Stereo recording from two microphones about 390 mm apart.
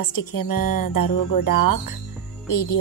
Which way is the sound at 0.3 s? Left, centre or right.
Left.